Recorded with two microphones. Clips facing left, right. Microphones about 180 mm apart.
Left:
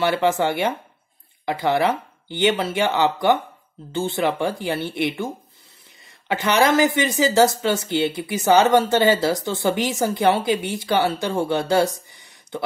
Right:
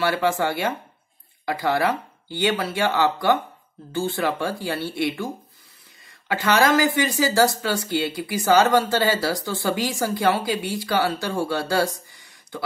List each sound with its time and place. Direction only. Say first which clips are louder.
0.0 s speech: left 2 dB; 20° left (ahead or behind)